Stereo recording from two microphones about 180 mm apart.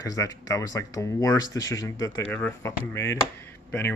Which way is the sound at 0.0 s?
20° left (ahead or behind).